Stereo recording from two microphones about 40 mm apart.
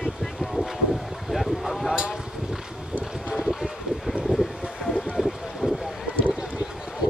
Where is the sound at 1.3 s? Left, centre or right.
Centre.